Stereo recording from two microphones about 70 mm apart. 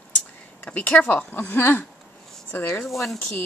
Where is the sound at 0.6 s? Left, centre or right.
Centre.